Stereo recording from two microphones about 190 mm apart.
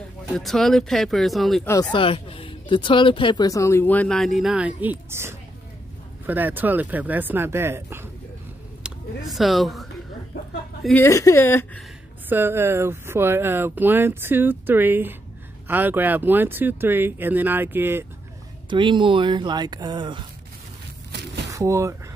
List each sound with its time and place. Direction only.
0.3 s speech: centre (ahead or behind)
1.6 s speech: 15° left (ahead or behind); by 8.1 s 10° right (ahead or behind)
8.8 s a woman's voice: centre (ahead or behind)
11.1 s speech: 15° left (ahead or behind)
12.3 s speech: 10° right (ahead or behind)
18.7 s speech: 25° right (ahead or behind)
21.1 s a sound: 65° right (ahead or behind)
21.5 s speech: 15° right (ahead or behind)